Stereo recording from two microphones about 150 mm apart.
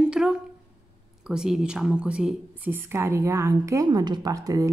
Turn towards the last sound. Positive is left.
turn(degrees=-25)  # may be behind; listen again after turning